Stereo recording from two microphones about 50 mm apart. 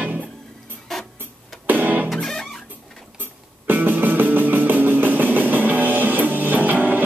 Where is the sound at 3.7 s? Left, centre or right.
Right.